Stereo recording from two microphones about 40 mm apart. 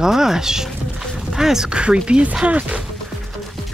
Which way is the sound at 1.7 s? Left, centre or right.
Right.